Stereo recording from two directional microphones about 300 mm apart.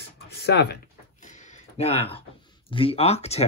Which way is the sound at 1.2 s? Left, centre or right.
Left.